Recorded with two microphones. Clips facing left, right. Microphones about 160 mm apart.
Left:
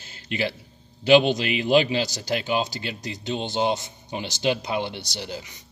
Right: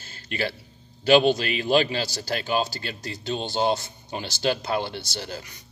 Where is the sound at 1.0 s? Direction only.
20° left (ahead or behind).